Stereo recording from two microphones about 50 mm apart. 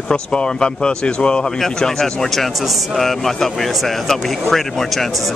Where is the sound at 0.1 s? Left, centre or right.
Centre.